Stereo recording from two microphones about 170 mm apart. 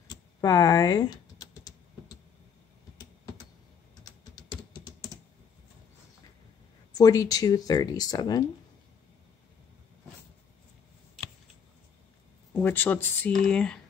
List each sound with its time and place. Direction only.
0.1 s typing: 20° left (ahead or behind)
4.0 s typing: 25° left (ahead or behind)
6.9 s speech: 20° left (ahead or behind)
12.5 s speech: 10° left (ahead or behind)